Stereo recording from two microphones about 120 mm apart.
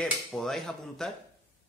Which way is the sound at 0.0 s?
5° left (ahead or behind).